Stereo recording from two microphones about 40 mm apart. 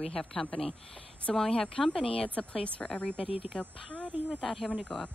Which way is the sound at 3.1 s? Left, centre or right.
Right.